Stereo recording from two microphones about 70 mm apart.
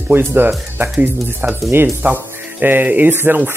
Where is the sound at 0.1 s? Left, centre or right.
Right.